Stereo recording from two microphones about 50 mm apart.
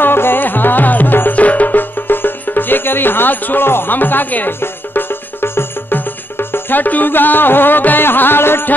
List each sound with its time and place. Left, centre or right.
0.0 s music: left
1.3 s music: left
4.6 s music: left